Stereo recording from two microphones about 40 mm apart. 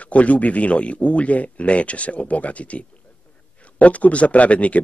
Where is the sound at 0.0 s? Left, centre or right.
Left.